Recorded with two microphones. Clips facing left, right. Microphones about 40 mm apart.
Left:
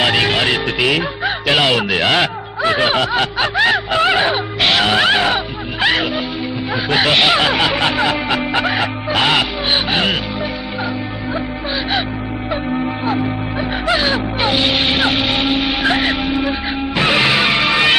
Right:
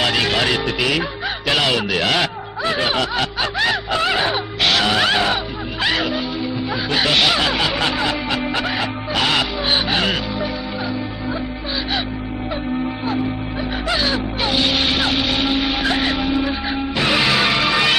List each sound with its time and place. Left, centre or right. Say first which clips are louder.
0.0 s speech: left 3 dB; centre
13.8 s music: left 4 dB; left